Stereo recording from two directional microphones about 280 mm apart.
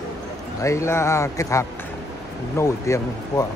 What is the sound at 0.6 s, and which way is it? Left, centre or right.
Speech, centre.